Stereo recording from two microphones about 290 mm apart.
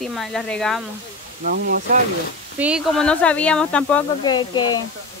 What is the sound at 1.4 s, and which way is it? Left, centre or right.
Speech, right.